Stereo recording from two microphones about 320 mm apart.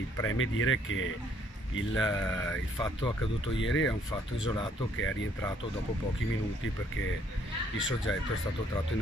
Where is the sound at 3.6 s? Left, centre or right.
Left.